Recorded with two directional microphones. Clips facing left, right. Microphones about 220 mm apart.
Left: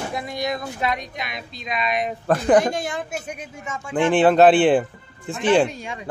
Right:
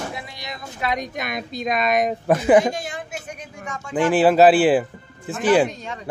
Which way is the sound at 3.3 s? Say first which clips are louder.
Left 1 dB; 5° left (ahead or behind).